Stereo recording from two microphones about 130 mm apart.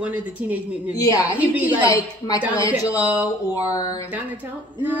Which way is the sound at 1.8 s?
30° left (ahead or behind).